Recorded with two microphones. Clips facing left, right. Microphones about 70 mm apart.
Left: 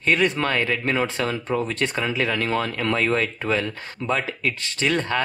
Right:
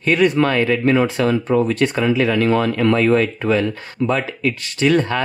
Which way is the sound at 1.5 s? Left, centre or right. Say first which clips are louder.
Right 7 dB; right.